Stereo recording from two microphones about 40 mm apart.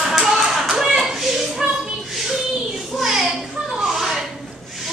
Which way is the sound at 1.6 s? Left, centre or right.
Centre.